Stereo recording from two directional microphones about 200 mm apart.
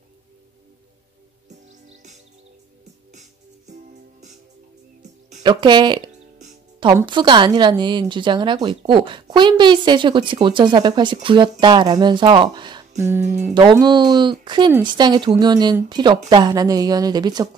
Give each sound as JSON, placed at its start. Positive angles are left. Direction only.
{"t": 3.1, "sound": "music", "side_deg": -35}
{"t": 5.4, "sound": "a woman's voice", "side_deg": -20}
{"t": 13.0, "sound": "music", "side_deg": -10}
{"t": 13.6, "sound": "a woman's voice", "side_deg": -20}